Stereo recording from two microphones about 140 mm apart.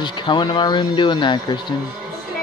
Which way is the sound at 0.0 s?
35° left (ahead or behind).